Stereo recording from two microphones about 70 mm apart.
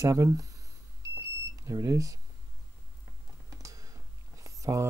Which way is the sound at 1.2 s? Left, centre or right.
Right.